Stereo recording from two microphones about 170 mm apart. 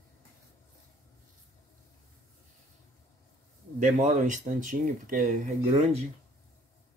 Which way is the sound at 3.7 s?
45° right (ahead or behind).